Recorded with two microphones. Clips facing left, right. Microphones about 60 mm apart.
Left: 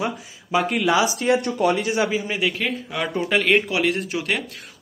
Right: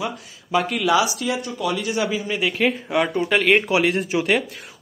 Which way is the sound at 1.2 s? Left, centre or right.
Left.